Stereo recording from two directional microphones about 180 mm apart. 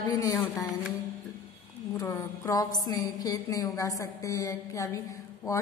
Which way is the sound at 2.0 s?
20° left (ahead or behind).